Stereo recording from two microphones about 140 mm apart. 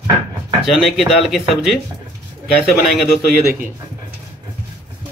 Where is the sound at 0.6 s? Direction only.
Centre (ahead or behind).